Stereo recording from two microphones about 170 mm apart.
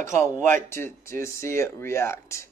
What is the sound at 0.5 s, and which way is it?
Speech, 15° left (ahead or behind).